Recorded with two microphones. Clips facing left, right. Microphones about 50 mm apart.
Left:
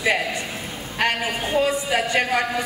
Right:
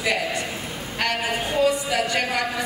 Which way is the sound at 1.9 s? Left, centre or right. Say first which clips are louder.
Left 2 dB; left.